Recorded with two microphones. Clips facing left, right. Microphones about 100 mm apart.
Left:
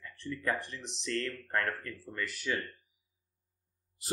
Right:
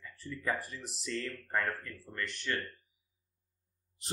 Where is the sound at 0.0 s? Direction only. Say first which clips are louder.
Left 2 dB; 5° right (ahead or behind).